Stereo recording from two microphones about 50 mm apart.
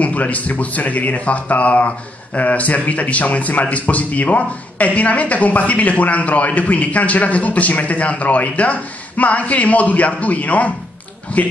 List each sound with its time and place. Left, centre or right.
0.0 s speech: left